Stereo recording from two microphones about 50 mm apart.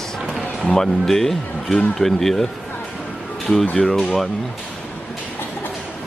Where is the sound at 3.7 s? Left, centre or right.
Centre.